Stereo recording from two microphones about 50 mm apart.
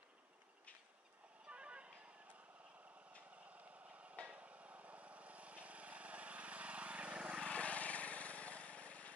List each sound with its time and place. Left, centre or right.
1.5 s music: right
4.4 s vehicle: right
7.4 s vehicle: left